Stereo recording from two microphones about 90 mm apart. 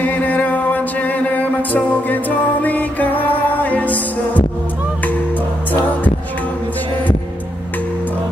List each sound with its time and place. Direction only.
0.0 s music: 20° left (ahead or behind)